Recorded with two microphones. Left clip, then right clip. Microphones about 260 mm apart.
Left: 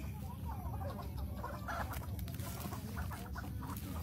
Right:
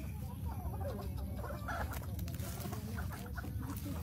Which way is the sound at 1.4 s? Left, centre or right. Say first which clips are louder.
Even; left.